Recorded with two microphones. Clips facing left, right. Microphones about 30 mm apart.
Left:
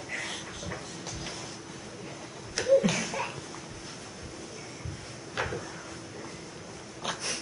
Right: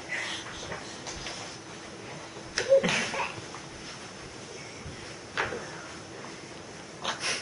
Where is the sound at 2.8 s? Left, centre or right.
Right.